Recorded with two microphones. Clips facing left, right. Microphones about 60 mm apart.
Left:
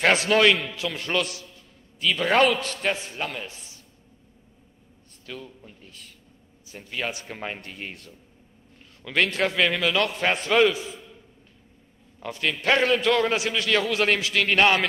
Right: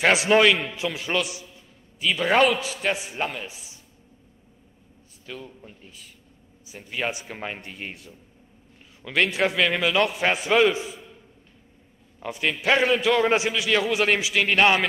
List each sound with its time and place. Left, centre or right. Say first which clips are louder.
0.0 s a man's voice: right 1 dB; centre
5.2 s a man's voice: even; centre
10.9 s a sound: even; centre
12.2 s a man's voice: right 1 dB; centre